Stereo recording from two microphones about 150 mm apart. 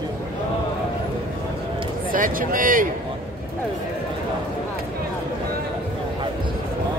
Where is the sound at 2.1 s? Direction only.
70° right (ahead or behind).